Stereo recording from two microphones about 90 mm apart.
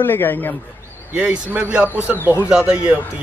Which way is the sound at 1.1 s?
15° right (ahead or behind).